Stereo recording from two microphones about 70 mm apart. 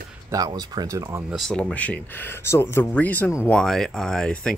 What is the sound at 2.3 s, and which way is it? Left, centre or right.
Speech, left.